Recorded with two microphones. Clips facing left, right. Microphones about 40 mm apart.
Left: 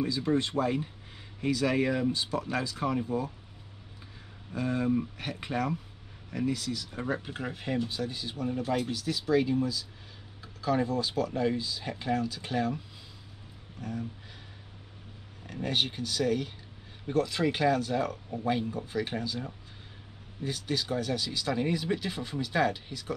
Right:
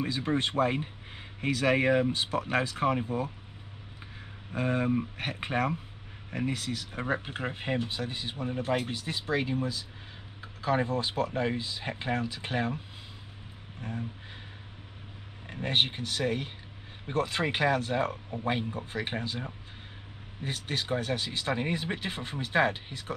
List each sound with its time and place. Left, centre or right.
0.0 s speech: right
4.6 s speech: right
15.4 s speech: right